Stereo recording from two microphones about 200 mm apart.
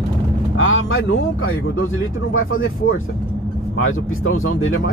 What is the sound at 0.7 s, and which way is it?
Speech, 85° left.